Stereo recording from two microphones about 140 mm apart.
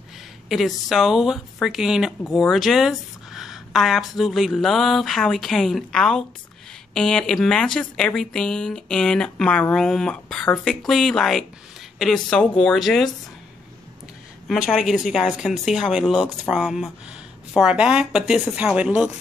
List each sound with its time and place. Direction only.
0.5 s a woman's voice: centre (ahead or behind)
14.7 s a woman's voice: centre (ahead or behind)